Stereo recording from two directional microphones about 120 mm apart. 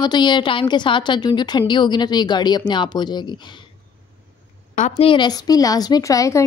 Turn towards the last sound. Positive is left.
turn(degrees=25)  # may be behind; listen again after turning